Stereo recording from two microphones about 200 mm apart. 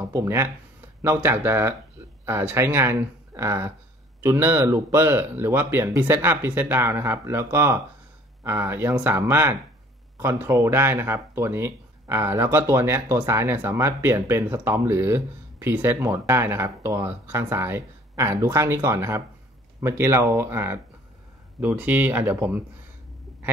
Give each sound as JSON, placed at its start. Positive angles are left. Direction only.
{"t": 0.0, "sound": "speech", "side_deg": -15}